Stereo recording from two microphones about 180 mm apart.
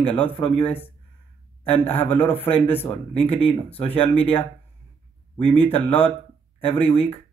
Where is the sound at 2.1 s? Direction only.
30° left (ahead or behind).